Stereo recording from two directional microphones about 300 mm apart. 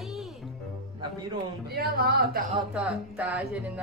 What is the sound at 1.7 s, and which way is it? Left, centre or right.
Speech, right.